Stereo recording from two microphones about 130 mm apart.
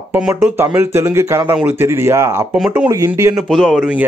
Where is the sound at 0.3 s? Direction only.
15° right (ahead or behind).